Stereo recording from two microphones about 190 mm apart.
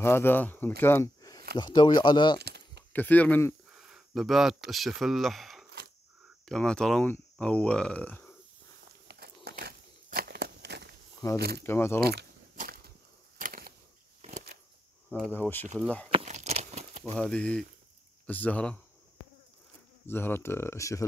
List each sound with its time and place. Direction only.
0.0 s speech: 10° left (ahead or behind)
2.4 s keys jangling: 60° right (ahead or behind)
2.9 s speech: 10° left (ahead or behind)
3.7 s speech: centre (ahead or behind)
9.0 s a sound: 55° right (ahead or behind)
11.3 s speech: 55° right (ahead or behind)
11.6 s speech: 10° left (ahead or behind)
12.0 s biting: 55° right (ahead or behind)
13.4 s a sound: 50° right (ahead or behind)
15.2 s speech: 10° left (ahead or behind)
16.1 s a sound: 35° right (ahead or behind)
17.0 s speech: 5° left (ahead or behind)
20.1 s speech: 10° left (ahead or behind)